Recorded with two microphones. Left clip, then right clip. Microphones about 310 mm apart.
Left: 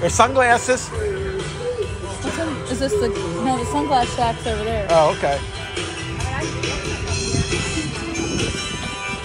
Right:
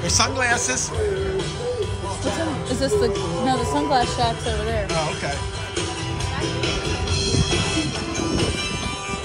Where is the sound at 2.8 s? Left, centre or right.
Centre.